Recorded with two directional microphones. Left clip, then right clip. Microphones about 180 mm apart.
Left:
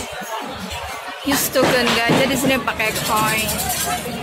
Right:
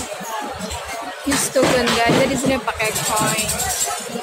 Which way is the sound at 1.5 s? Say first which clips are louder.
Even; 5° right (ahead or behind).